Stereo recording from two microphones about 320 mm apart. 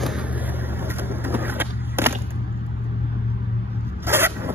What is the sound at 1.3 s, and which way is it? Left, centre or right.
Skateboard, centre.